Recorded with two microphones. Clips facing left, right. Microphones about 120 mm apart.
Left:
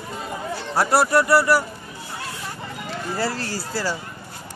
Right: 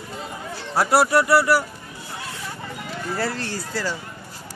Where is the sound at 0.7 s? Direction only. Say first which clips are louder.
Even; 5° right (ahead or behind).